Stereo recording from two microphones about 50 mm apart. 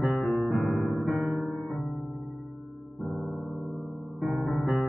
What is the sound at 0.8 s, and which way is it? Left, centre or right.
Electric piano, centre.